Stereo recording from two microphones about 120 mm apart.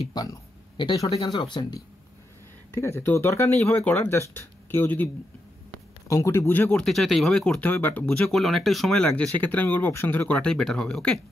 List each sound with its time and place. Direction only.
0.1 s speech: 35° left (ahead or behind)
2.7 s speech: 20° left (ahead or behind)
6.8 s speech: centre (ahead or behind)